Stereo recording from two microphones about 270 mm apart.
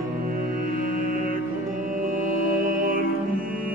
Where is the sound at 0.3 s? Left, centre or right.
Right.